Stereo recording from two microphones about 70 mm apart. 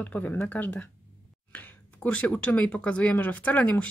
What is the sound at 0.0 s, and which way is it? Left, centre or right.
Speech, left.